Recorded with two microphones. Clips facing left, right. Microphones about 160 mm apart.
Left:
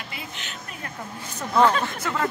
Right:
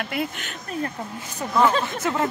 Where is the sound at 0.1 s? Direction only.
55° right (ahead or behind).